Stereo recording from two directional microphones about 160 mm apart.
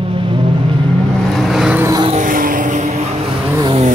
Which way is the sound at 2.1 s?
55° right (ahead or behind).